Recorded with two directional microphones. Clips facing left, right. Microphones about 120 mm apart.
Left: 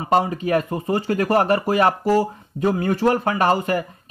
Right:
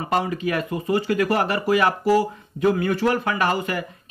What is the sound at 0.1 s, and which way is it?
Speech, 35° left (ahead or behind).